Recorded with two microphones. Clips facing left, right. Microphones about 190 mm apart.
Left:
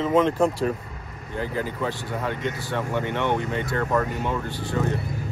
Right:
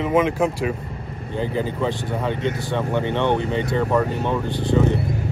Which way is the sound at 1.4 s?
25° right (ahead or behind).